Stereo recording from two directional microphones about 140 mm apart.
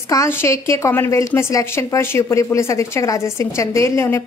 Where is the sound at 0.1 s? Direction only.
20° left (ahead or behind).